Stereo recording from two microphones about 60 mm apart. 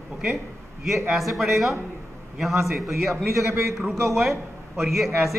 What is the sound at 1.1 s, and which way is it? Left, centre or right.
A man's voice, centre.